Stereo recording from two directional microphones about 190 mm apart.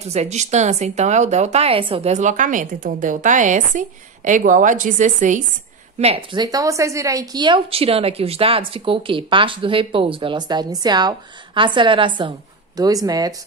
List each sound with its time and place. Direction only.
0.0 s speech: 35° right (ahead or behind)
5.9 s a woman's voice: 30° right (ahead or behind)